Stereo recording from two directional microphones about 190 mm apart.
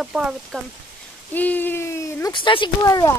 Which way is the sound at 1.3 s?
10° left (ahead or behind).